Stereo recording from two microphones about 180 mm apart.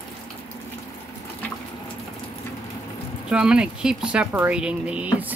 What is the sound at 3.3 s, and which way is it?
Speech, 5° right (ahead or behind).